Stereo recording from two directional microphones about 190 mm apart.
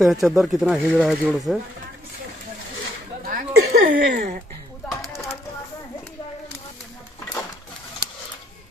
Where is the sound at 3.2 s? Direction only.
50° right (ahead or behind).